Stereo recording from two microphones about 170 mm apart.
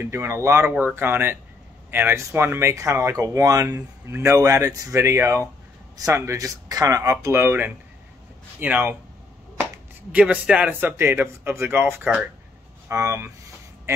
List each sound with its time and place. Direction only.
0.0 s speech: 15° right (ahead or behind)
10.1 s speech: 5° right (ahead or behind)